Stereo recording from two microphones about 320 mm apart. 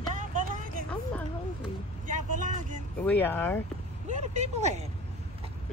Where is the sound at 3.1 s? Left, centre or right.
Centre.